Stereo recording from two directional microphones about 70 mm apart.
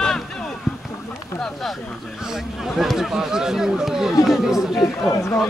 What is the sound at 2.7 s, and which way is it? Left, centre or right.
Speech, centre.